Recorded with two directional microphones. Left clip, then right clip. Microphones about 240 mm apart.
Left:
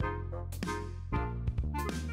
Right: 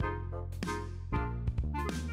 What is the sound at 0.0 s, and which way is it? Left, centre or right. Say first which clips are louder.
Music: even; centre.